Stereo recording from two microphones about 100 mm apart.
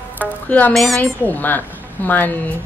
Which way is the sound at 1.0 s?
15° left (ahead or behind).